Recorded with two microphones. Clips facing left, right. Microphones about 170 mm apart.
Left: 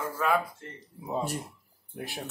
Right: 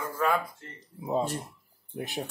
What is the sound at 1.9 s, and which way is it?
Speech, 20° right (ahead or behind).